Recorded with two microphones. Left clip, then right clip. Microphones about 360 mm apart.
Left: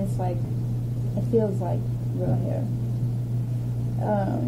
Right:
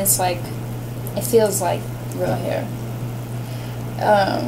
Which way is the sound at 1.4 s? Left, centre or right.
Centre.